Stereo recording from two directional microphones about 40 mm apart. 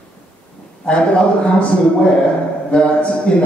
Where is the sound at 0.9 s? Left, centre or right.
Left.